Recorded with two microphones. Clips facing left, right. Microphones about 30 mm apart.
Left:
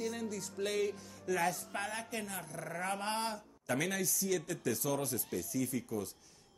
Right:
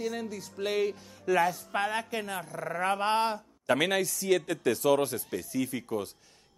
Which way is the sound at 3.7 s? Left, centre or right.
Right.